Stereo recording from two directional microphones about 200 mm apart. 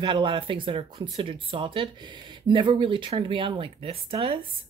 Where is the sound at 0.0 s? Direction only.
25° right (ahead or behind).